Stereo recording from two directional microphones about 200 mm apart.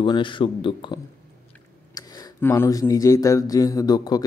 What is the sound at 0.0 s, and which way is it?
Speech, 25° left (ahead or behind).